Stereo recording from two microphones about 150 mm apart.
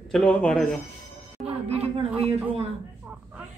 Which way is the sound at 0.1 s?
10° left (ahead or behind).